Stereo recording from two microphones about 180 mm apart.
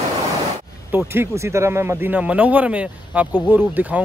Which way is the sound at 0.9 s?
15° right (ahead or behind).